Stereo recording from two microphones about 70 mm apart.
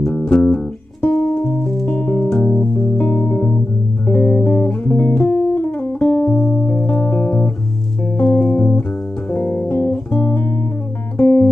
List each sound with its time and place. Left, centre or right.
0.1 s music: centre
4.1 s guitar: left
6.5 s music: left
10.1 s music: centre
11.1 s music: left